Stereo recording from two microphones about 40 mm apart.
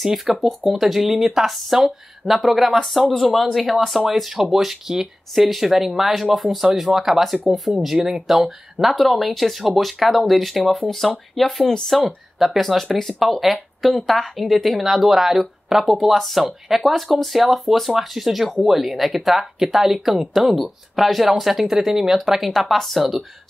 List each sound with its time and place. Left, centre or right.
0.0 s speech: centre
6.7 s speech: centre
11.6 s speech: centre
11.9 s speech: centre